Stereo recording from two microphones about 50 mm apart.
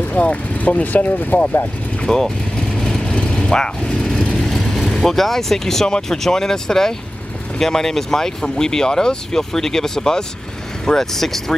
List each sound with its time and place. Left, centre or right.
0.1 s speech: left
2.0 s speech: centre
2.7 s vehicle: centre
4.8 s speech: centre